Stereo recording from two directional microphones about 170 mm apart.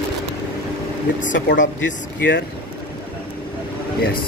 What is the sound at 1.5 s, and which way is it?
Speech, 90° left.